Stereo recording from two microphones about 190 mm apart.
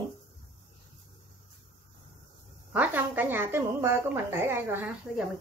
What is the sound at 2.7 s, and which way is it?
A woman's voice, 10° right (ahead or behind).